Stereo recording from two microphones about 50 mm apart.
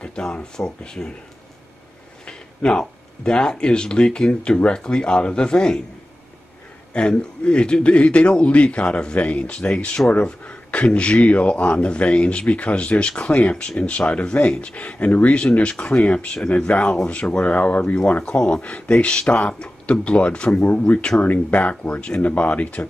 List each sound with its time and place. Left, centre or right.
0.0 s speech: centre
2.2 s speech: centre
6.9 s a man's voice: centre; by 17.9 s left
18.2 s a man's voice: centre